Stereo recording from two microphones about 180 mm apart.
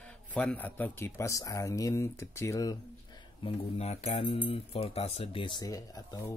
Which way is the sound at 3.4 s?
35° left (ahead or behind).